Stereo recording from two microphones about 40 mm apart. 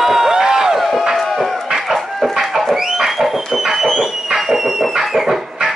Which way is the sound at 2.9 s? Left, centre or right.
Centre.